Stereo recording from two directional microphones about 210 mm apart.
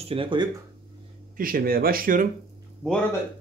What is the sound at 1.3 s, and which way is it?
Speech, 45° right (ahead or behind).